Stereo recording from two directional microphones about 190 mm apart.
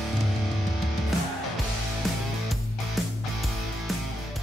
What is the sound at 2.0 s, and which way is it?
Music, centre (ahead or behind).